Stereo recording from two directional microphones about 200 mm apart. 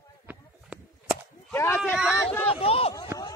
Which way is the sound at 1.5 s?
10° left (ahead or behind).